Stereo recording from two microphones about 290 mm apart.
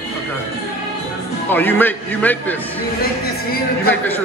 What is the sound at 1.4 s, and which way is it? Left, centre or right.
A man's voice, centre.